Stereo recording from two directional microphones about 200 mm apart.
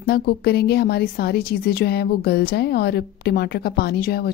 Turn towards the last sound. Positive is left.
turn(degrees=50)  # may be behind; listen again after turning